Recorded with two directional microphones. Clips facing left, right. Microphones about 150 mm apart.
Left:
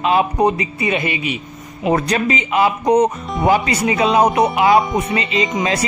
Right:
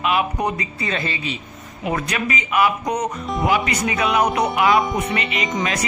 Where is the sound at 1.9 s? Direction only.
30° left (ahead or behind).